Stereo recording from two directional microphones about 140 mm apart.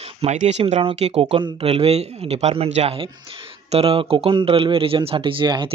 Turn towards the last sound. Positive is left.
turn(degrees=-35)  # may be behind; listen again after turning